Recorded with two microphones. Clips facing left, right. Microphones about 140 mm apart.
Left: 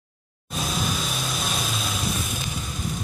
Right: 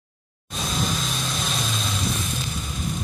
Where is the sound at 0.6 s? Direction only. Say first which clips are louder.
Even; 5° left (ahead or behind).